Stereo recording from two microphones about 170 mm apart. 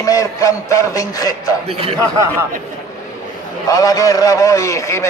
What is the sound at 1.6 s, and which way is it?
Speech, 35° right (ahead or behind).